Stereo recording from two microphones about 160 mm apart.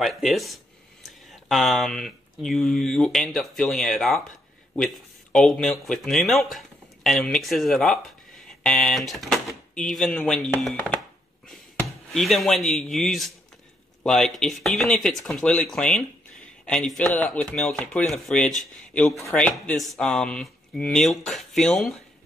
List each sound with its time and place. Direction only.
0.0 s speech: centre (ahead or behind)